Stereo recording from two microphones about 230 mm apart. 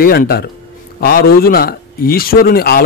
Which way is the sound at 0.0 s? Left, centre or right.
Left.